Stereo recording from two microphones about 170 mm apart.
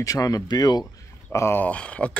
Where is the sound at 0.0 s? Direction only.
20° left (ahead or behind).